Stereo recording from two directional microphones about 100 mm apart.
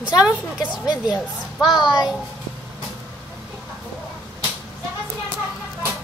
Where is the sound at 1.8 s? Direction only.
40° left (ahead or behind).